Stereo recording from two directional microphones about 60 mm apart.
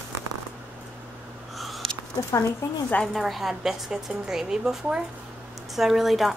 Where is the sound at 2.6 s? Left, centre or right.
Left.